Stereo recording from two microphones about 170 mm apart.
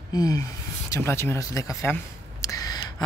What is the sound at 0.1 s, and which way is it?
A woman's voice, 20° left (ahead or behind).